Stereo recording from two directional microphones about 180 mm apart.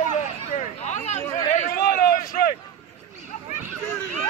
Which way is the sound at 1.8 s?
55° left (ahead or behind).